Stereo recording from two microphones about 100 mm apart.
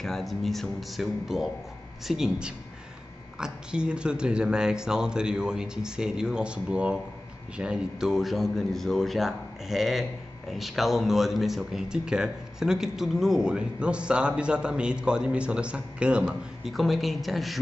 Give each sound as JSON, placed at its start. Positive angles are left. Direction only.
{"t": 0.0, "sound": "speech", "side_deg": 0}